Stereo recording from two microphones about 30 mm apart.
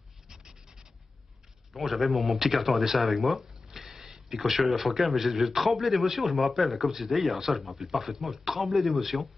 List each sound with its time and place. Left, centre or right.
0.3 s rub: right
1.7 s a man's voice: centre
3.7 s a sound: centre
4.4 s a man's voice: centre